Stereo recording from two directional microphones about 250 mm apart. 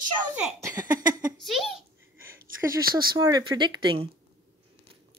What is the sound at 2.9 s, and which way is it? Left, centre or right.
Speech, centre.